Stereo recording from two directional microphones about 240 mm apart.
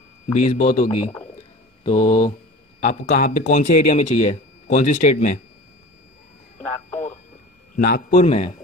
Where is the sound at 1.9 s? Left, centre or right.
Left.